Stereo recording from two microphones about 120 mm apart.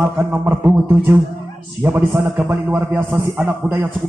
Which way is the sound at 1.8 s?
15° right (ahead or behind).